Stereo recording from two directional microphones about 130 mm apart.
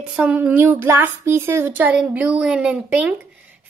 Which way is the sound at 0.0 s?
10° right (ahead or behind).